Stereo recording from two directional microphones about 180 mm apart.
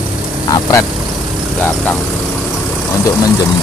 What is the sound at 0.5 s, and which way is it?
Vehicle, 15° left (ahead or behind).